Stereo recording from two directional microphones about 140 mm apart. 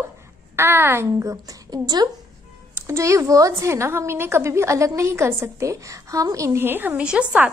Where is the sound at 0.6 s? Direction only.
15° right (ahead or behind).